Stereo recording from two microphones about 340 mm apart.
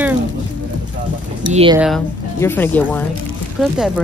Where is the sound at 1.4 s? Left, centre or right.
Centre.